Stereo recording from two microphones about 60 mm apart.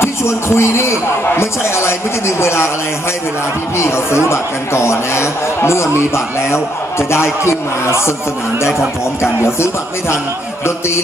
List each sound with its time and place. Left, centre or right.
0.0 s a man's voice: left
3.7 s a man's voice: left
9.2 s a man's voice: left